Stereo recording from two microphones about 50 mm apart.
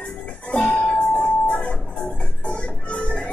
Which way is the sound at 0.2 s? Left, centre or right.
Left.